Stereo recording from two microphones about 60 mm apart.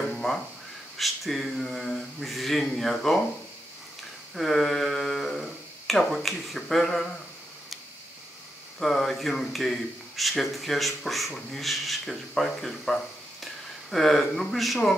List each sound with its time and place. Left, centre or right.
0.1 s a sound: centre
0.9 s speech: centre
4.4 s speech: centre
8.7 s speech: centre